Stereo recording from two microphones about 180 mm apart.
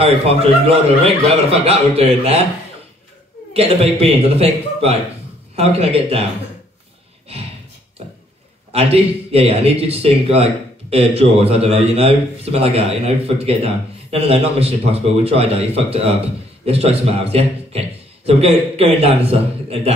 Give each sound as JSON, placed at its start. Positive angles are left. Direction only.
{"t": 0.0, "sound": "a man's voice", "side_deg": -35}
{"t": 3.5, "sound": "a man's voice", "side_deg": -35}
{"t": 8.7, "sound": "a man's voice", "side_deg": -35}